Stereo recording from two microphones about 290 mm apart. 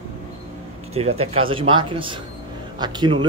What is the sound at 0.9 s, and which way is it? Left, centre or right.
Speech, right.